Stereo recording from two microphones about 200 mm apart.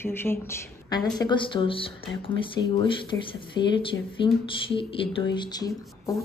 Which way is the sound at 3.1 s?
15° left (ahead or behind).